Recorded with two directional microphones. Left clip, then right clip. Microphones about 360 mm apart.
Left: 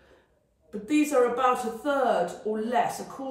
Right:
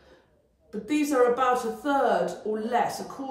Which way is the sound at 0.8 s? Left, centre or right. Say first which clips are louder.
Even; centre.